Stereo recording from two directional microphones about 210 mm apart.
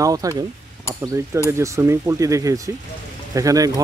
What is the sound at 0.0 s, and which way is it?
Speech, 15° right (ahead or behind).